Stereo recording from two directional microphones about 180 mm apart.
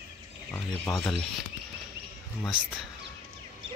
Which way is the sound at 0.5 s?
15° left (ahead or behind).